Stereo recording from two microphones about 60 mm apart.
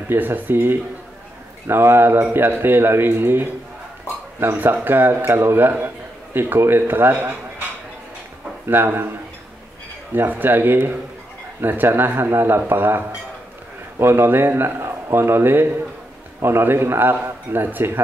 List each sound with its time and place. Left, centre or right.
0.1 s a man's voice: right
8.6 s a man's voice: right
10.1 s a man's voice: right